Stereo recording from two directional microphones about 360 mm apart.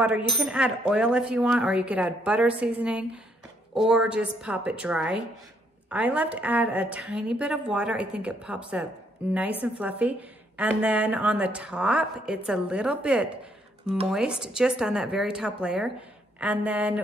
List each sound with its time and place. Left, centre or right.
0.5 s a woman's voice: centre